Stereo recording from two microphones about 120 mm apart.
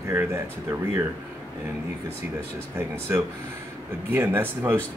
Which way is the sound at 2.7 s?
20° right (ahead or behind).